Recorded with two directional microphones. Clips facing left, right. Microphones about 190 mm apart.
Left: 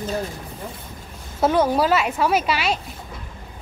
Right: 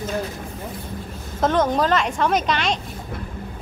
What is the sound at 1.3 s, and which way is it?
A woman's voice, 10° left (ahead or behind).